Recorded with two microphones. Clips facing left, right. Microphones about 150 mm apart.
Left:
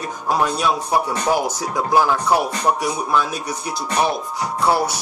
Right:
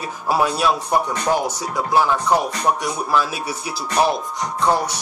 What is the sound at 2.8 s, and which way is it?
Speech, 5° right (ahead or behind).